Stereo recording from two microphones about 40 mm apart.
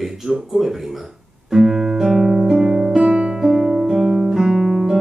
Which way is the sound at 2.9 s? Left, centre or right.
Right.